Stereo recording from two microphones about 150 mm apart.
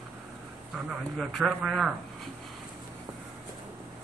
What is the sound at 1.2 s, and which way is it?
Speech, centre (ahead or behind).